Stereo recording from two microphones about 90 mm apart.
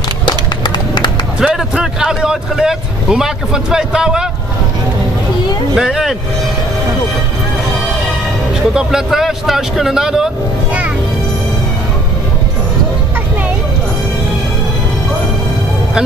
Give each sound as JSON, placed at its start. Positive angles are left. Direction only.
{"t": 0.2, "sound": "run", "side_deg": 55}
{"t": 1.4, "sound": "speech", "side_deg": -5}
{"t": 5.8, "sound": "speech", "side_deg": -5}
{"t": 8.7, "sound": "speech", "side_deg": -5}